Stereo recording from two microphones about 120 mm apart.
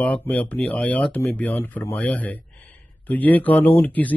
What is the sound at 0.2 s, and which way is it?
Speech, 15° left (ahead or behind).